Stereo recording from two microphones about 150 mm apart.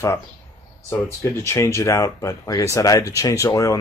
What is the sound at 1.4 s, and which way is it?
Speech, 20° left (ahead or behind).